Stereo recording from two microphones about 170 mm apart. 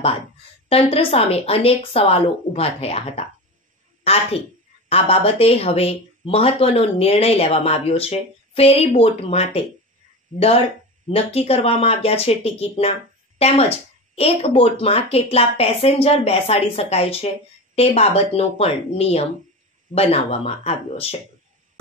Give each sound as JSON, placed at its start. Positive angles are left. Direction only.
{"t": 0.7, "sound": "a woman's voice", "side_deg": 35}
{"t": 11.1, "sound": "speech", "side_deg": 35}